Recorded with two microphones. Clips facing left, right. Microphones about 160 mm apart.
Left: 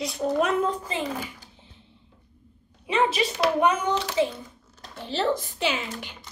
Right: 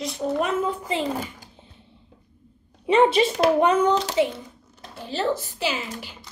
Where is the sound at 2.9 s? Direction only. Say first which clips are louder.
Right 6 dB; 30° right (ahead or behind).